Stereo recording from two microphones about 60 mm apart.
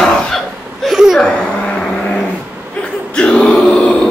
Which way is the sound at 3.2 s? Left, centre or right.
Centre.